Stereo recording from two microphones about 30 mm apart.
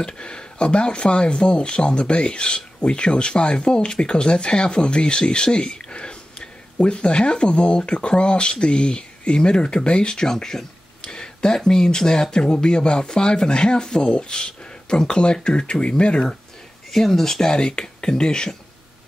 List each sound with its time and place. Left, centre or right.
0.0 s speech: left
10.3 s speech: centre
11.0 s a sound: left
11.5 s speech: centre; by 16.3 s left
16.9 s speech: centre
17.6 s speech: left